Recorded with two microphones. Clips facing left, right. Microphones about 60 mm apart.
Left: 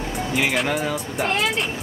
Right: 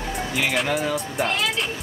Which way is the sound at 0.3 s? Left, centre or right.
Centre.